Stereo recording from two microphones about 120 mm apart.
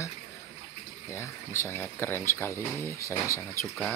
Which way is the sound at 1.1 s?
20° left (ahead or behind).